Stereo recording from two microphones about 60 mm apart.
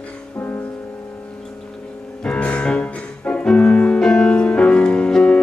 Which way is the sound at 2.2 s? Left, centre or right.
Left.